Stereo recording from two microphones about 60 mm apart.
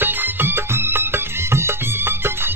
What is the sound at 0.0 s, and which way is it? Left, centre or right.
Music, right.